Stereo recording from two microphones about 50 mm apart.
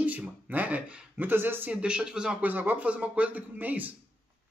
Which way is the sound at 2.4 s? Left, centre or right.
Right.